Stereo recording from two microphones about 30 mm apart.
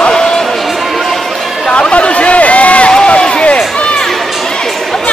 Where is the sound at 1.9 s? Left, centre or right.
Left.